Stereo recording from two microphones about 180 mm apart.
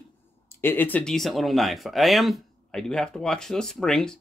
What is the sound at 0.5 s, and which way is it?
Speech, 10° left (ahead or behind).